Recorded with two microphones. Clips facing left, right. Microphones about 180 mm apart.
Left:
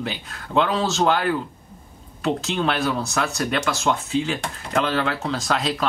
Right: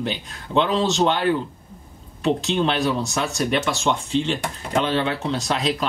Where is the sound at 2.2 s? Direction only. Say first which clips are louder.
Right 2 dB; 25° right (ahead or behind).